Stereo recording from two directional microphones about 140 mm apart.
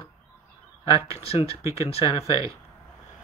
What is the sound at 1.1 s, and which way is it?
Speech, 45° left (ahead or behind).